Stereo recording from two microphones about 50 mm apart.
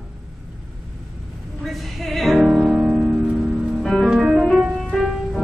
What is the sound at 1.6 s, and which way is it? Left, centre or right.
Music, centre.